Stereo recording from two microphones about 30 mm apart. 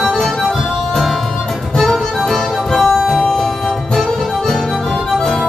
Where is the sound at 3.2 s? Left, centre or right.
Centre.